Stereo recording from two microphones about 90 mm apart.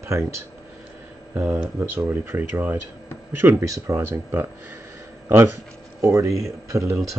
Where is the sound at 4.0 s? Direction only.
25° right (ahead or behind).